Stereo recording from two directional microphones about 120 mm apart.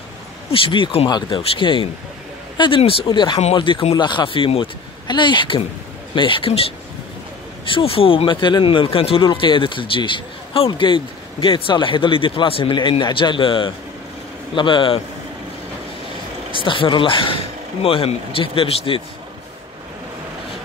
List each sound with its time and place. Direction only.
0.5 s speech: 50° left (ahead or behind)
7.6 s speech: 50° left (ahead or behind)
16.5 s speech: 45° left (ahead or behind)